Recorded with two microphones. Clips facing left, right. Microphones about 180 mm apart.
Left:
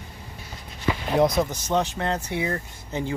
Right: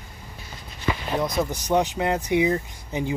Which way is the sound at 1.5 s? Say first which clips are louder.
Right 2 dB; 15° right (ahead or behind).